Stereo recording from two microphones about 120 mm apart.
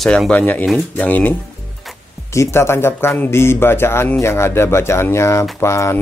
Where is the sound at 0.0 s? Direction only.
5° left (ahead or behind).